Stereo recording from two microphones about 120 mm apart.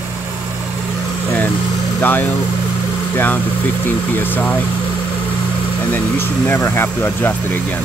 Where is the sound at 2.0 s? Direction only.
15° left (ahead or behind).